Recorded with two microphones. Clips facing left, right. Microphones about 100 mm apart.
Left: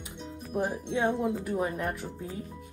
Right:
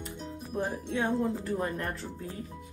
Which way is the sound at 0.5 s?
15° left (ahead or behind).